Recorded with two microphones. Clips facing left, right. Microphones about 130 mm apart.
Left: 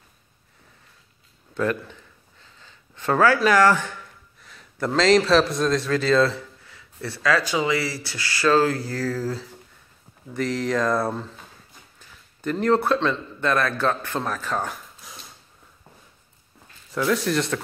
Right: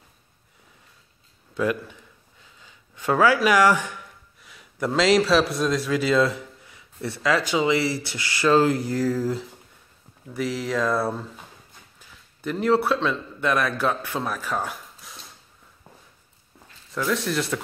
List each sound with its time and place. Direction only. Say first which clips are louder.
1.5 s a man's voice: even; 10° right (ahead or behind)
2.4 s a sound: left 1 dB; 10° right (ahead or behind)
3.4 s speech: left 1 dB; 10° right (ahead or behind)
10.3 s a man's voice: left 2 dB; 5° right (ahead or behind)
16.9 s speech: left 3 dB; centre (ahead or behind)